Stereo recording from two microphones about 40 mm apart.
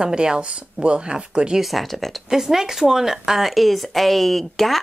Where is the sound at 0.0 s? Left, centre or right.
Right.